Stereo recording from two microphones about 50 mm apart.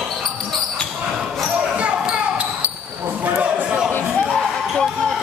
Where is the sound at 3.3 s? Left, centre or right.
Right.